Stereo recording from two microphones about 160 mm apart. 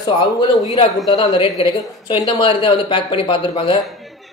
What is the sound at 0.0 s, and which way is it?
Speech, 25° left (ahead or behind).